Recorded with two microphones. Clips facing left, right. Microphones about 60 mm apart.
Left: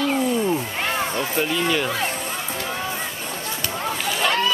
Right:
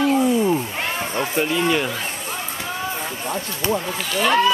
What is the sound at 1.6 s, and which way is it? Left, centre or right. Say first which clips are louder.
Speech: right 3 dB; centre.